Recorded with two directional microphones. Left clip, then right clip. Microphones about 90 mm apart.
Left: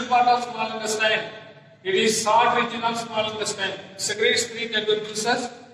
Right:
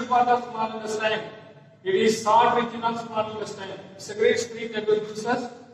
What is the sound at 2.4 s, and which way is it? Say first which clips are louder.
A man's voice: left 1 dB; 30° right (ahead or behind).